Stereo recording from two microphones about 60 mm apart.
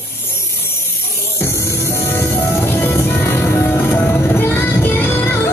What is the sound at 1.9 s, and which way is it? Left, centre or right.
Music, left.